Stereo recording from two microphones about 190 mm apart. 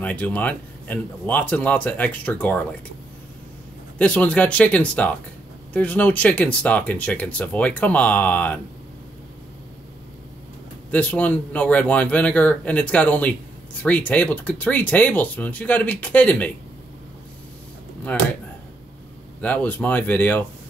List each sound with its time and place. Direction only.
0.0 s speech: 10° left (ahead or behind)
4.0 s speech: 5° left (ahead or behind)
10.9 s speech: 5° left (ahead or behind)
19.4 s speech: 10° left (ahead or behind)